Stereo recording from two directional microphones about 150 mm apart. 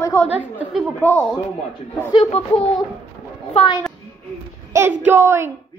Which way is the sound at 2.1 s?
40° left (ahead or behind).